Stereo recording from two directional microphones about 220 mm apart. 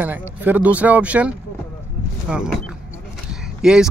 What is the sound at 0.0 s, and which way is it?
Speech, 10° right (ahead or behind).